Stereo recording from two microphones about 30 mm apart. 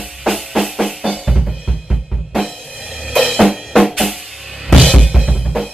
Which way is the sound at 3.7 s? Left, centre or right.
Centre.